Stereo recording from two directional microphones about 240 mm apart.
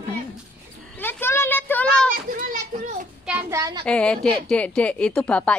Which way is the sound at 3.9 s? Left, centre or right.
Centre.